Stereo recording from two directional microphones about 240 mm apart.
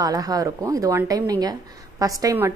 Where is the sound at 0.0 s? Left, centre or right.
Centre.